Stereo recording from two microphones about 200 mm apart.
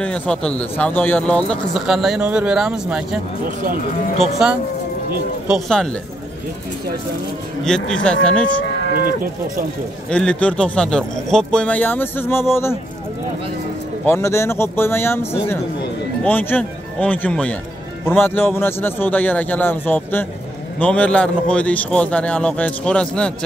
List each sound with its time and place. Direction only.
0.0 s speech: 5° left (ahead or behind)
4.4 s speech: 5° right (ahead or behind)
7.6 s speech: 5° left (ahead or behind)
8.9 s speech: 45° right (ahead or behind)
10.0 s speech: 5° left (ahead or behind)
14.0 s a man's voice: 15° left (ahead or behind)